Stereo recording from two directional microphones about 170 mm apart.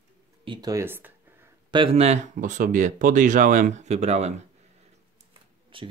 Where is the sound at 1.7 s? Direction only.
30° right (ahead or behind).